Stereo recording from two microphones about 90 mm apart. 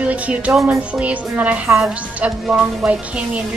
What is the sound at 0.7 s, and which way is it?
A woman's voice, 15° right (ahead or behind).